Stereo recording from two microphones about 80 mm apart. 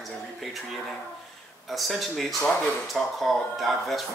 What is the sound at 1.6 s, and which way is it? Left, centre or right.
Speech, centre.